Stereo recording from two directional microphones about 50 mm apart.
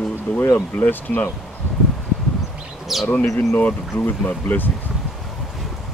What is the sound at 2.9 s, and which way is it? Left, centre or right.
Speech, centre.